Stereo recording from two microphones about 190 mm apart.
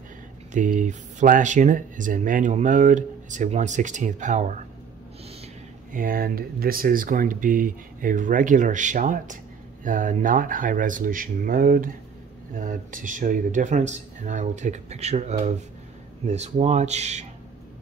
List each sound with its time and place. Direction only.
0.5 s speech: 40° right (ahead or behind)
5.9 s speech: 50° right (ahead or behind)